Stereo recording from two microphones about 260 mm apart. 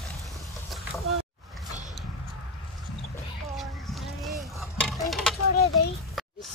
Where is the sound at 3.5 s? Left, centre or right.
Centre.